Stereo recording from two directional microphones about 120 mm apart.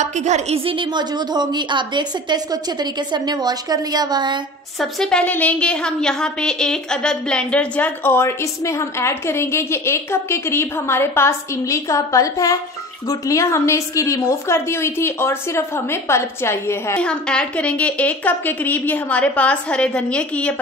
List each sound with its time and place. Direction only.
0.0 s a woman's voice: 75° right (ahead or behind)
0.7 s a woman's voice: 40° right (ahead or behind)
4.7 s a woman's voice: 5° left (ahead or behind)
5.2 s a woman's voice: 15° left (ahead or behind)
17.0 s a woman's voice: 10° left (ahead or behind)